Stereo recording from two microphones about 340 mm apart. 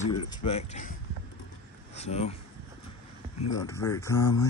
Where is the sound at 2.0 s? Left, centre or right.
Centre.